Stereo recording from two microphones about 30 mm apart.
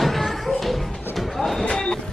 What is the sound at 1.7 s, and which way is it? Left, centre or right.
Vehicle, left.